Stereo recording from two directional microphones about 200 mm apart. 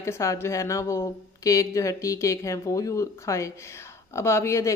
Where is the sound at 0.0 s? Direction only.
15° left (ahead or behind).